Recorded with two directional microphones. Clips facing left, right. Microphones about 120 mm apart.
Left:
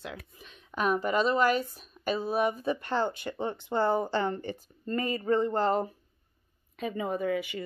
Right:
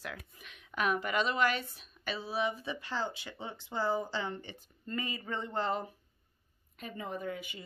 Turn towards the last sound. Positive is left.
turn(degrees=80)